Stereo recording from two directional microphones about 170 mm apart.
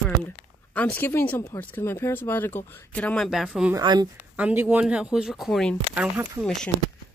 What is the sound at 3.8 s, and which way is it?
Speech, 25° right (ahead or behind).